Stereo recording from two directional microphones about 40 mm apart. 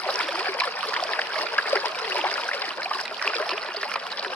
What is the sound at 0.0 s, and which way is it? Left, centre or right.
Stream, left.